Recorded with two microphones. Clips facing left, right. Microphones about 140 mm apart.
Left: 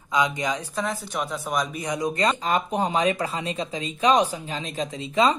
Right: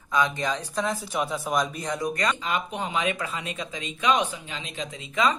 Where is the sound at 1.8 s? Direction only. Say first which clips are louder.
Left 3 dB; 15° left (ahead or behind).